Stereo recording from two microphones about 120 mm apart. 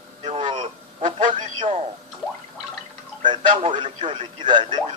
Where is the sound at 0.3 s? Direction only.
45° right (ahead or behind).